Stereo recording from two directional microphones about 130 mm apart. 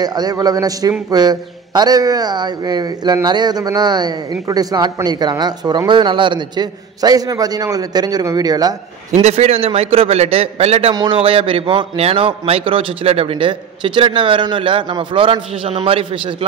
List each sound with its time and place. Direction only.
0.0 s speech: 30° right (ahead or behind)
9.1 s a man's voice: 55° right (ahead or behind)
10.9 s a man's voice: 35° right (ahead or behind)